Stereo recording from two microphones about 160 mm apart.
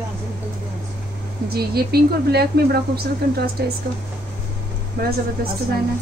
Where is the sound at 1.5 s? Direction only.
80° right.